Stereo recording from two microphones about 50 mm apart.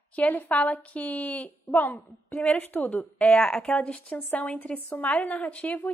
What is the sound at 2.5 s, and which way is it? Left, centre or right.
Speech, left.